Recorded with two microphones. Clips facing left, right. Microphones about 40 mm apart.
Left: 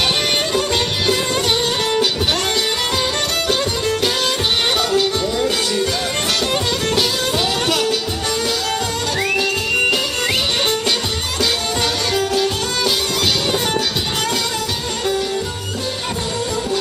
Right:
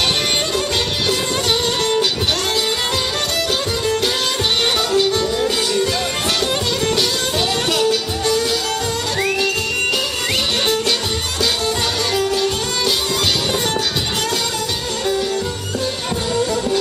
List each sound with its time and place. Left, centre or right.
0.6 s music: centre
3.4 s music: centre
12.1 s music: centre